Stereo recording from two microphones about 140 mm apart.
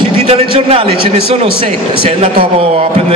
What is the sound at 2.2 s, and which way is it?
Speech, 45° right (ahead or behind).